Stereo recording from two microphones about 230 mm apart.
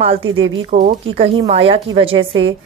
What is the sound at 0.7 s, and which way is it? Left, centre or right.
A woman's voice, right.